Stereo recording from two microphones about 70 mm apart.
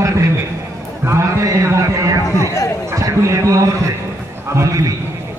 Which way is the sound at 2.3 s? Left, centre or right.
Left.